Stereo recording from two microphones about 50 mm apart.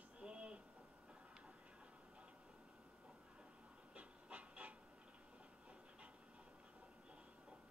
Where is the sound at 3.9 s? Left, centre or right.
Right.